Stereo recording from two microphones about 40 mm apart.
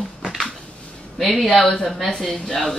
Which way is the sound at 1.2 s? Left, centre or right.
Centre.